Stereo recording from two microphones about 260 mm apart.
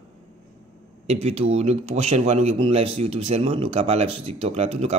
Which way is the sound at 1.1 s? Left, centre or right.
Right.